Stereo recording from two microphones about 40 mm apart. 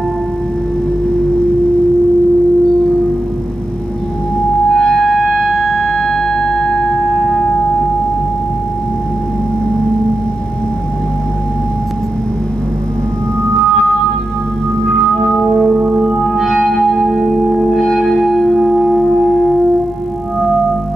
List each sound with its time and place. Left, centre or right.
4.6 s music: centre
13.7 s music: centre
14.9 s organ: centre
15.8 s music: centre
16.3 s music: centre